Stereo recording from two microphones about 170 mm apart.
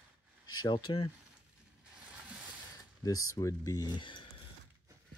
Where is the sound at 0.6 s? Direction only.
25° left (ahead or behind).